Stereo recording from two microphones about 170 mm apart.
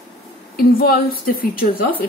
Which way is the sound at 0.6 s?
60° left (ahead or behind).